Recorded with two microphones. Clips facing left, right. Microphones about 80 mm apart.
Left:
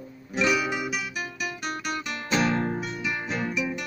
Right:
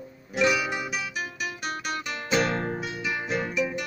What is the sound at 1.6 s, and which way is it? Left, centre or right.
Guitar, centre.